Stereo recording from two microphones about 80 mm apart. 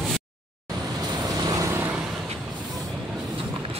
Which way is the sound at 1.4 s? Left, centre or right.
Right.